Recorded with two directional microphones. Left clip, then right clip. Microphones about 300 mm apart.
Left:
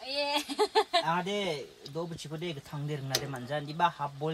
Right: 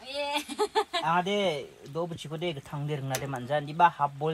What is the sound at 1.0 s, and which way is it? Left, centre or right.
Speech, centre.